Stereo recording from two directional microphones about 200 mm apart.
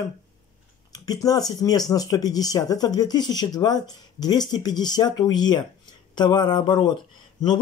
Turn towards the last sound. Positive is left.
turn(degrees=20)  # may be behind; listen again after turning